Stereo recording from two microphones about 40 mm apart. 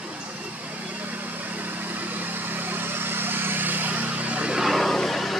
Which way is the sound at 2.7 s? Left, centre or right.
Right.